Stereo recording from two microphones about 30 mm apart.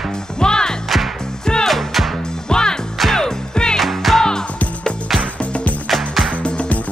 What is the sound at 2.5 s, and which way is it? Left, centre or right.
Music, left.